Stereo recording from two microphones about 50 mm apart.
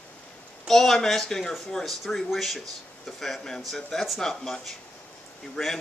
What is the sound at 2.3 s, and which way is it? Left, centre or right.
Speech, centre.